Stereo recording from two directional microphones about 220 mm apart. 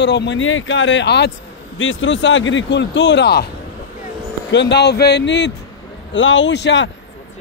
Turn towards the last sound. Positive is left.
turn(degrees=55)  # may be behind; listen again after turning